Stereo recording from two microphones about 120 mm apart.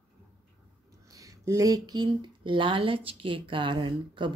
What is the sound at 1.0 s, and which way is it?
Speech, 30° right (ahead or behind).